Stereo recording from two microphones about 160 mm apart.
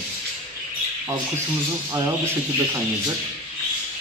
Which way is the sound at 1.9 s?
15° right (ahead or behind).